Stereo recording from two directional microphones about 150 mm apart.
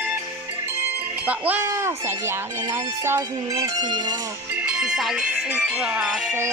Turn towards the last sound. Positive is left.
turn(degrees=-10)  # may be behind; listen again after turning